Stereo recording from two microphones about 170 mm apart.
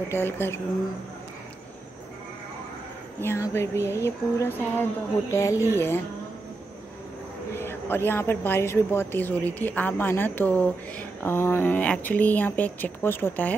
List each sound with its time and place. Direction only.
0.1 s a woman's voice: 15° left (ahead or behind)
3.2 s a woman's voice: 15° left (ahead or behind)
7.5 s a woman's voice: 15° left (ahead or behind)